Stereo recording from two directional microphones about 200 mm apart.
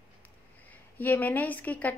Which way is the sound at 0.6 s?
10° left (ahead or behind).